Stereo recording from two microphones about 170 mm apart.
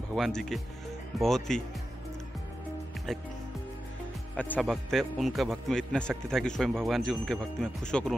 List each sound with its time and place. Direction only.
0.1 s a man's voice: centre (ahead or behind)
3.1 s a man's voice: centre (ahead or behind)
4.4 s a man's voice: 5° left (ahead or behind)